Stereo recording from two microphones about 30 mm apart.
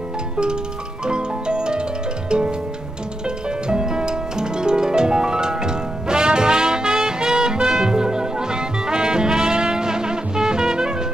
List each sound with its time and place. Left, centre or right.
1.0 s music: right